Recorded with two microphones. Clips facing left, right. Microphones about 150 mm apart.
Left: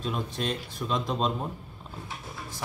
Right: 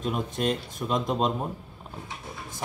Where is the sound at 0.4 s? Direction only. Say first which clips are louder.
Right 4 dB; 45° right (ahead or behind).